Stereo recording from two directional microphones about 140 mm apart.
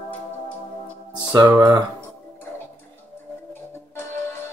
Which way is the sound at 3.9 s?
15° left (ahead or behind).